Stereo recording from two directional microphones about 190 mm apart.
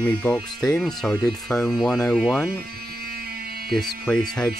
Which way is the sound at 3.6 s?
Centre (ahead or behind).